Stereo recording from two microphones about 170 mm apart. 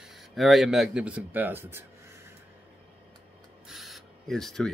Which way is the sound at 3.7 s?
Centre (ahead or behind).